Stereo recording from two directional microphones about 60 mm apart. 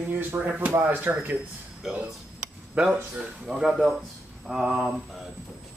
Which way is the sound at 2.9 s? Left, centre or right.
Centre.